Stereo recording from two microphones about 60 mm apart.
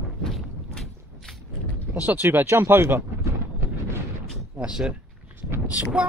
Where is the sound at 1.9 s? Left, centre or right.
Right.